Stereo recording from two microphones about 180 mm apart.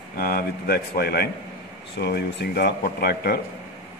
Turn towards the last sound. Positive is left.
turn(degrees=60)  # may be behind; listen again after turning